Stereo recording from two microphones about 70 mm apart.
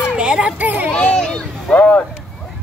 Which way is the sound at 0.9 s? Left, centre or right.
Centre.